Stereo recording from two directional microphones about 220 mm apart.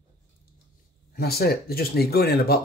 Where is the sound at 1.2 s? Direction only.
45° left (ahead or behind).